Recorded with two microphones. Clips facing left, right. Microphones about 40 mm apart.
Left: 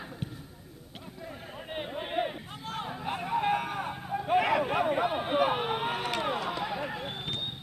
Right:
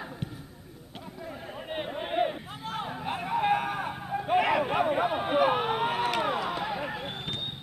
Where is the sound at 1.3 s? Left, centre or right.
Centre.